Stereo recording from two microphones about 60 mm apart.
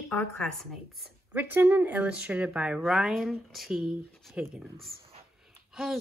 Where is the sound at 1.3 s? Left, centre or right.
Right; by 2.8 s centre.